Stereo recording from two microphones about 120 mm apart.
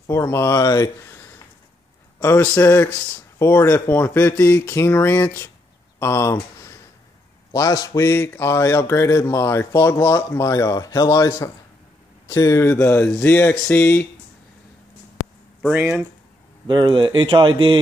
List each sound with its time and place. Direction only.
0.1 s speech: 20° left (ahead or behind)
15.6 s speech: 10° right (ahead or behind)
16.6 s speech: 40° right (ahead or behind)